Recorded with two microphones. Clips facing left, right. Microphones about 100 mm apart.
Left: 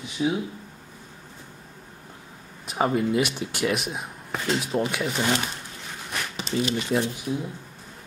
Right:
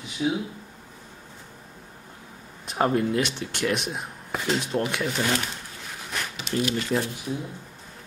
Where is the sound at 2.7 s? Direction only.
Centre (ahead or behind).